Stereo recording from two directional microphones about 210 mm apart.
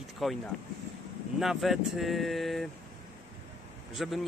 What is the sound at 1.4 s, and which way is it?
Speech, centre (ahead or behind).